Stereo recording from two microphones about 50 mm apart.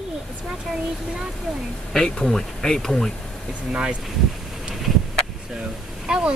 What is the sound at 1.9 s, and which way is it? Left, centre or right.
Speech, centre.